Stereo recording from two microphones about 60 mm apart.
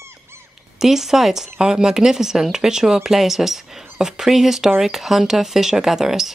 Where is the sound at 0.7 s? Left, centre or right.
Centre.